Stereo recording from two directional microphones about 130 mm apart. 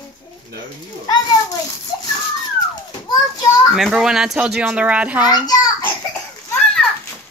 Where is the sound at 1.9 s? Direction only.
30° left (ahead or behind).